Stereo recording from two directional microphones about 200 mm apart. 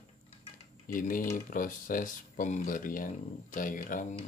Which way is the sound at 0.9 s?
45° left (ahead or behind).